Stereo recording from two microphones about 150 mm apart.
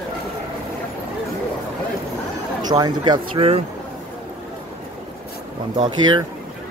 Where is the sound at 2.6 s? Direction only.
30° right (ahead or behind).